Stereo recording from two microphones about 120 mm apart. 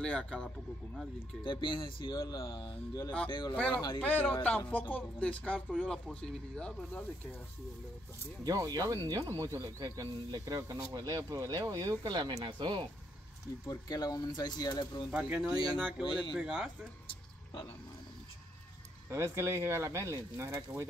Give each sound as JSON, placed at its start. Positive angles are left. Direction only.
{"t": 0.0, "sound": "speech", "side_deg": 5}
{"t": 1.4, "sound": "speech", "side_deg": 40}
{"t": 2.1, "sound": "speech", "side_deg": 25}
{"t": 4.0, "sound": "speech", "side_deg": 15}
{"t": 5.7, "sound": "speech", "side_deg": 0}
{"t": 8.7, "sound": "speech", "side_deg": -35}
{"t": 13.7, "sound": "speech", "side_deg": 30}
{"t": 15.0, "sound": "speech", "side_deg": -10}
{"t": 16.0, "sound": "speech", "side_deg": 45}
{"t": 16.3, "sound": "speech", "side_deg": -5}
{"t": 19.0, "sound": "speech", "side_deg": -25}